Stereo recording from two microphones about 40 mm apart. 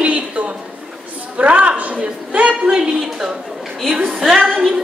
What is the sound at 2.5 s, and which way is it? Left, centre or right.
Speech, right.